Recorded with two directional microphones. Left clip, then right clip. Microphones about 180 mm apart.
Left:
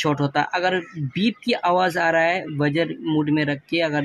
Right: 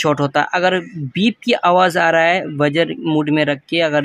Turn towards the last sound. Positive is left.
turn(degrees=-25)  # may be behind; listen again after turning